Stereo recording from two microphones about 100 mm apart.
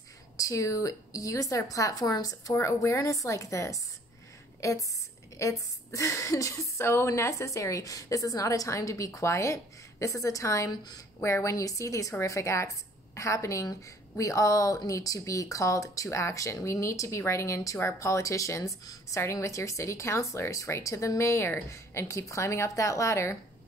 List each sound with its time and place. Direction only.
0.4 s a woman's voice: 35° left (ahead or behind)
10.7 s speech: 45° left (ahead or behind)
11.1 s a woman's voice: 25° left (ahead or behind)